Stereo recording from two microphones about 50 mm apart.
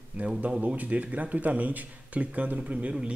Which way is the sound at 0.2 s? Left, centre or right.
Right.